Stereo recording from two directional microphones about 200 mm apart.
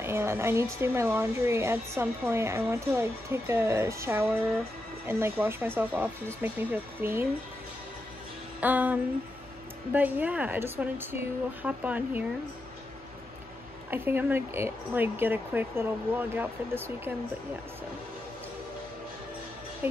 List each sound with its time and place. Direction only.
0.0 s speech: 10° right (ahead or behind)
8.5 s music: 10° right (ahead or behind)
9.9 s speech: 10° right (ahead or behind)
13.8 s speech: 10° right (ahead or behind)
19.8 s speech: 10° right (ahead or behind)